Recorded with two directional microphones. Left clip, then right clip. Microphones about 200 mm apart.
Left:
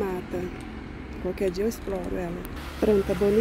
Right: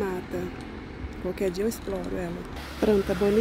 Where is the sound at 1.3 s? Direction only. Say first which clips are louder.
Left 1 dB; centre (ahead or behind).